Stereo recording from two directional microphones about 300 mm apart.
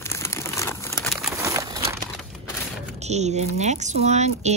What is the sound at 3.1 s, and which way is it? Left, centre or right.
Speech, right.